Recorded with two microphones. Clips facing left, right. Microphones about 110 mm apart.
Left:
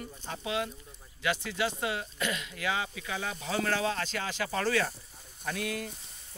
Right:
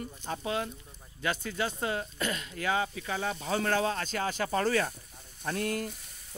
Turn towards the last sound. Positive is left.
turn(degrees=-45)  # may be behind; listen again after turning